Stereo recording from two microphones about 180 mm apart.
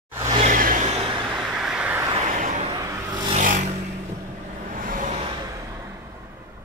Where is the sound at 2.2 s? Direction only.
45° right (ahead or behind).